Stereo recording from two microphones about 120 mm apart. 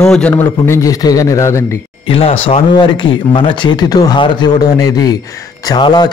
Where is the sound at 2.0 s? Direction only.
50° left (ahead or behind).